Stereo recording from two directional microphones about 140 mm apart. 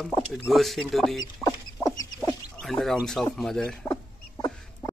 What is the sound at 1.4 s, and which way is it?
Rodents, 25° left (ahead or behind).